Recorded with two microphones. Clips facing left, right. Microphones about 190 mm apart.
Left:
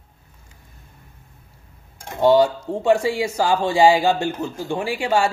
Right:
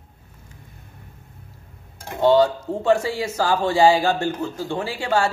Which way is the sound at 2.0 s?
15° left (ahead or behind).